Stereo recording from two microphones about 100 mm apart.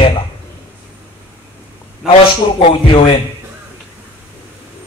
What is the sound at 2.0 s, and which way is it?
Speech, 5° right (ahead or behind).